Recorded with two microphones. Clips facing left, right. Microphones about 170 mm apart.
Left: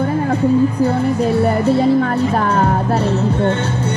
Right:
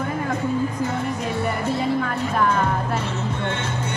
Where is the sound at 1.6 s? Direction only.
35° left (ahead or behind).